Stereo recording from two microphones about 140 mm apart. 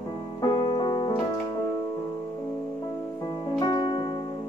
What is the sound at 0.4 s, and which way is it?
Music, 35° left (ahead or behind).